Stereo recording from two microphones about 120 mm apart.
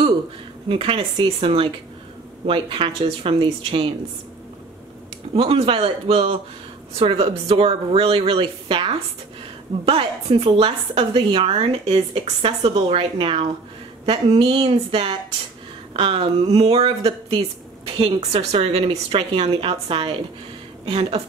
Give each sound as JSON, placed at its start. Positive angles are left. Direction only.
{"t": 0.7, "sound": "a woman's voice", "side_deg": -50}
{"t": 5.3, "sound": "a woman's voice", "side_deg": -50}